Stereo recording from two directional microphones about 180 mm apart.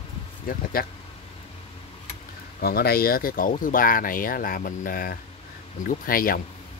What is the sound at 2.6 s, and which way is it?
Speech, 55° left (ahead or behind).